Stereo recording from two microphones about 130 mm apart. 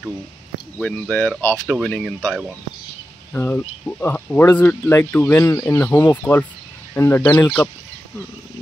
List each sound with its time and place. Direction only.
0.7 s speech: 5° left (ahead or behind)
3.3 s speech: 15° left (ahead or behind)
7.2 s speech: 30° left (ahead or behind)